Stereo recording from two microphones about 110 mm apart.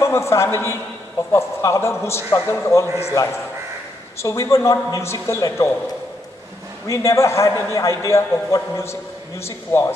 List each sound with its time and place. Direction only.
0.0 s a man's voice: 25° left (ahead or behind)
6.9 s a man's voice: 25° left (ahead or behind)